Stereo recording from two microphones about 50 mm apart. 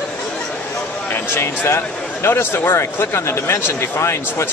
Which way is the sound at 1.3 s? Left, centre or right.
Left.